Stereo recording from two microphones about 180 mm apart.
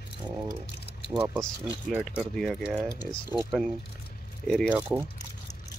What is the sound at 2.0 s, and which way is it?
Speech, centre (ahead or behind).